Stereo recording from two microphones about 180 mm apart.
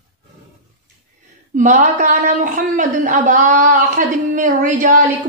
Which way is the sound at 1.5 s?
45° right (ahead or behind).